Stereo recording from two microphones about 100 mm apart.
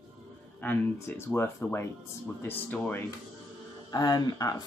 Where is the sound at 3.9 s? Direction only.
40° left (ahead or behind).